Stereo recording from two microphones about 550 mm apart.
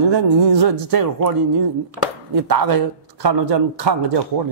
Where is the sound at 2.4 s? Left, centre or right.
Right.